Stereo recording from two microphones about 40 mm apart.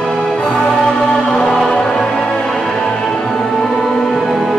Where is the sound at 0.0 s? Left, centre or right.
Centre.